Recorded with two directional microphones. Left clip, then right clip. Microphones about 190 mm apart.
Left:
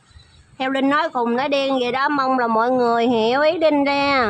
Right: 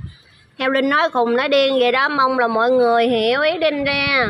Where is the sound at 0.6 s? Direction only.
Centre (ahead or behind).